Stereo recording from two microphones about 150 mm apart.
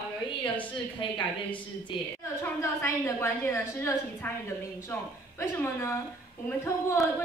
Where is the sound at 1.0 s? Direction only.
35° left (ahead or behind).